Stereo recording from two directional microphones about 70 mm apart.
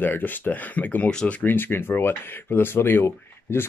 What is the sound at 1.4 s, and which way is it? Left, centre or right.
Speech, left.